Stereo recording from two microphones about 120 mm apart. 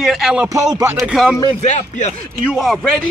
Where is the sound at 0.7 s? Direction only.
25° right (ahead or behind).